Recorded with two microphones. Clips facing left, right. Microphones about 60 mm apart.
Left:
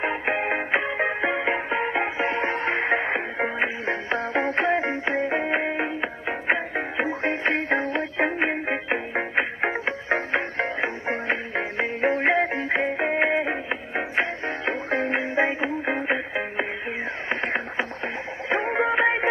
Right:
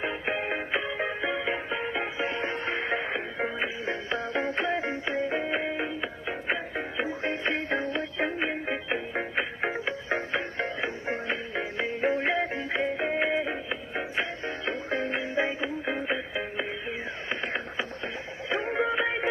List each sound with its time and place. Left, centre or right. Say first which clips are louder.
0.0 s music: left 5 dB; left